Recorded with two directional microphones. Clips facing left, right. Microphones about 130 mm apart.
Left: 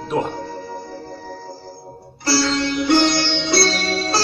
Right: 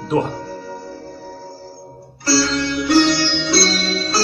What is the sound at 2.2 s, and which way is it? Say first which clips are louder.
Music: right 1 dB; 20° left (ahead or behind).